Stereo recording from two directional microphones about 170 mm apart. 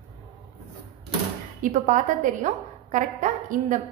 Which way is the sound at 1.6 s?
50° right (ahead or behind).